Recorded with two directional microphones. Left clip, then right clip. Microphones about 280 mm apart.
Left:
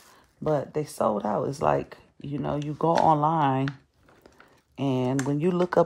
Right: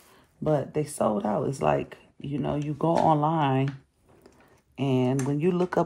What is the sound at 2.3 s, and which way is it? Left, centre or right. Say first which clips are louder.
Speech: even; left.